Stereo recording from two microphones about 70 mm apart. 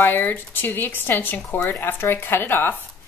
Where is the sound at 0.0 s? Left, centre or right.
Left.